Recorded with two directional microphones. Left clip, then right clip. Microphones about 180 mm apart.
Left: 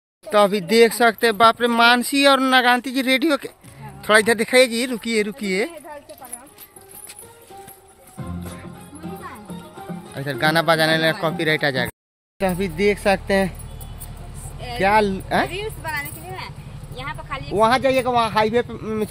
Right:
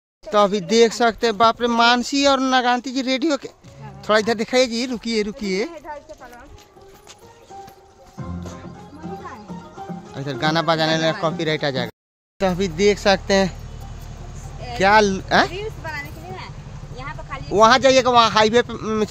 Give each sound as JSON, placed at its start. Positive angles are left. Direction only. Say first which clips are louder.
{"t": 0.3, "sound": "speech", "louder": "left 1 dB", "side_deg": 0}
{"t": 8.2, "sound": "music", "louder": "even", "side_deg": -35}
{"t": 10.1, "sound": "speech", "louder": "left 2 dB", "side_deg": 0}
{"t": 14.8, "sound": "speech", "louder": "right 3 dB", "side_deg": -15}
{"t": 15.5, "sound": "a sound", "louder": "left 2 dB", "side_deg": 0}
{"t": 17.5, "sound": "speech", "louder": "right 4 dB", "side_deg": -25}